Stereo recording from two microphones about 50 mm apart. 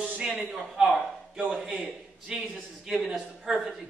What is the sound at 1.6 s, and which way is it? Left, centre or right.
A man's voice, right.